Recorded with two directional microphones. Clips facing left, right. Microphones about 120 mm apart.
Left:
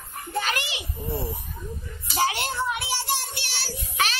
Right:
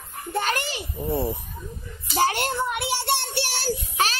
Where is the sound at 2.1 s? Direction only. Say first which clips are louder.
Right 3 dB; 50° right (ahead or behind).